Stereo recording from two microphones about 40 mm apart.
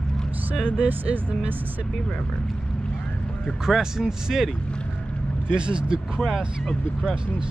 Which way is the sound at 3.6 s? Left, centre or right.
Centre.